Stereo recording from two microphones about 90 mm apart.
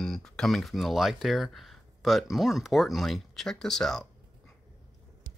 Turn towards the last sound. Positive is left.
turn(degrees=5)  # may be behind; listen again after turning